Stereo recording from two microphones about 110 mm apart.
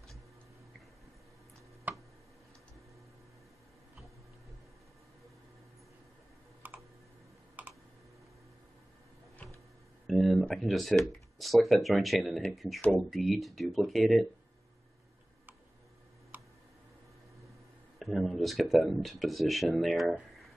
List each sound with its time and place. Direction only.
1.9 s a sound: 15° right (ahead or behind)
6.6 s typing: 15° right (ahead or behind)
7.6 s computer keyboard: 15° right (ahead or behind)
10.0 s a sound: centre (ahead or behind)
10.4 s speech: 5° left (ahead or behind)
17.9 s speech: centre (ahead or behind)